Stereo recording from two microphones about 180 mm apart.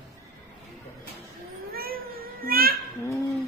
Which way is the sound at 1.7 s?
55° right (ahead or behind).